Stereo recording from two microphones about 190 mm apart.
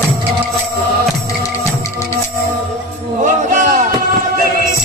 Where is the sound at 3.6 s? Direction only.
40° right (ahead or behind).